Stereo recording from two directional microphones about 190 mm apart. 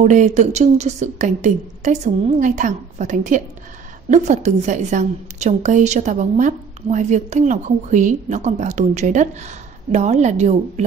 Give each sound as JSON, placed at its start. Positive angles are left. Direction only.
{"t": 0.0, "sound": "a woman's voice", "side_deg": -40}